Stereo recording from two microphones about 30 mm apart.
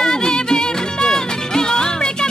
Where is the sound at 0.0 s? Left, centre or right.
Left.